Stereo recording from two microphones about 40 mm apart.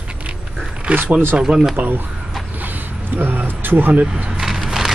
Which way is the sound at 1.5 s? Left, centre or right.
Right.